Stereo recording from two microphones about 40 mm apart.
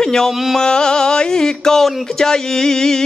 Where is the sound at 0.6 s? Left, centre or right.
Centre.